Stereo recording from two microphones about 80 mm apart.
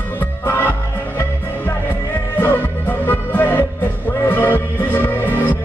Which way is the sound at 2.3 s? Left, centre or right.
Left.